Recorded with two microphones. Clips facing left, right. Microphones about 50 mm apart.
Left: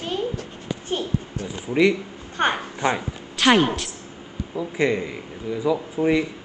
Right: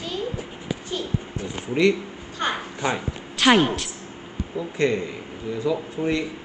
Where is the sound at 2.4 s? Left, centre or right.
Left.